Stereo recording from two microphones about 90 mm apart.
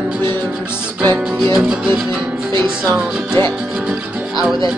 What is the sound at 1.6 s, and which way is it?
Music, 10° right (ahead or behind).